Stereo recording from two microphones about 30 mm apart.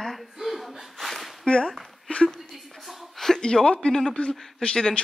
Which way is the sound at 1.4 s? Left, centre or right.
Left.